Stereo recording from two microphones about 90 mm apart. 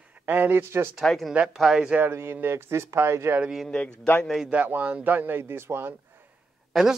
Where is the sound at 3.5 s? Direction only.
Centre (ahead or behind).